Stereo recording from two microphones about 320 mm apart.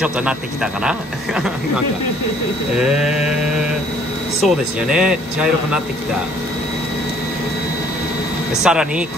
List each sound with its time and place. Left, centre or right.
0.8 s speech: centre
2.8 s a sound: centre
4.4 s speech: centre
8.6 s speech: centre